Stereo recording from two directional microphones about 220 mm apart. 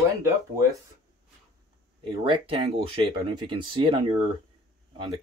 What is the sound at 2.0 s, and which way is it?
Speech, 25° right (ahead or behind).